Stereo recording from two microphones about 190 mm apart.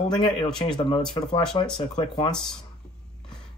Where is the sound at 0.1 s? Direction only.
25° left (ahead or behind).